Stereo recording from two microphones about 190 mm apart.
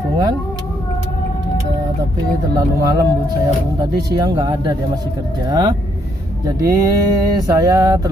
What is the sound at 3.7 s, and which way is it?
Speech, 20° right (ahead or behind).